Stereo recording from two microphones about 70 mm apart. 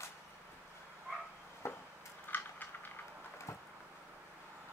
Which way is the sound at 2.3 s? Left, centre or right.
Left.